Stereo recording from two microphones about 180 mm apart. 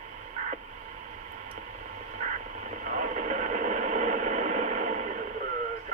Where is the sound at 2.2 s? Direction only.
45° right (ahead or behind).